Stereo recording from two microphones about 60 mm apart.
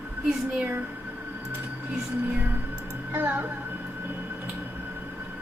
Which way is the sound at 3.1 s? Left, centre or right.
Right.